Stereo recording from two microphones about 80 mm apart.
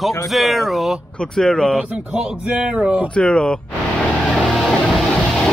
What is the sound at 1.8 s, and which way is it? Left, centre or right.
Speech, centre.